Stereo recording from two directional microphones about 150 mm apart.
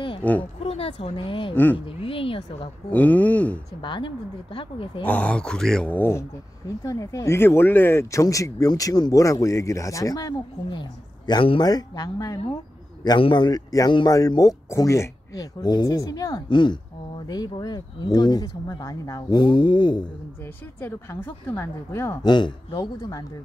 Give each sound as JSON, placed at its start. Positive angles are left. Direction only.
{"t": 0.2, "sound": "a woman's voice", "side_deg": 10}
{"t": 0.6, "sound": "speech", "side_deg": 40}
{"t": 1.5, "sound": "a woman's voice", "side_deg": 10}
{"t": 2.0, "sound": "speech", "side_deg": 40}
{"t": 2.9, "sound": "a woman's voice", "side_deg": 10}
{"t": 3.8, "sound": "speech", "side_deg": 30}
{"t": 5.0, "sound": "a woman's voice", "side_deg": 10}
{"t": 19.4, "sound": "speech", "side_deg": 30}
{"t": 20.8, "sound": "a woman's voice", "side_deg": 15}
{"t": 22.2, "sound": "speech", "side_deg": 30}